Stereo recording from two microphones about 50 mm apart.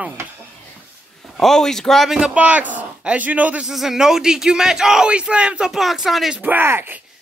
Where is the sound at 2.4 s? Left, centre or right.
Right.